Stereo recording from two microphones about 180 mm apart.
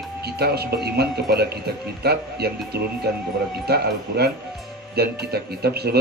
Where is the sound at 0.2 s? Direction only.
60° right (ahead or behind).